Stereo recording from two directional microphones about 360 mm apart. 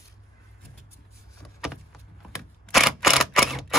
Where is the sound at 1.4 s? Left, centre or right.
Centre.